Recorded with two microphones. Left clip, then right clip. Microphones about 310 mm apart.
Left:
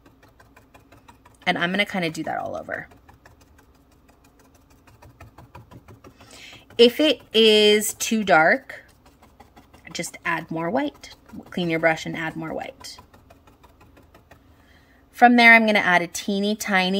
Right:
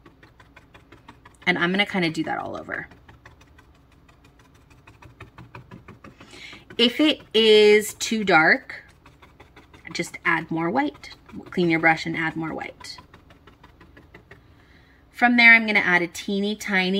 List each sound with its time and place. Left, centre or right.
1.4 s speech: centre
5.5 s a sound: centre
9.8 s speech: centre
15.1 s speech: centre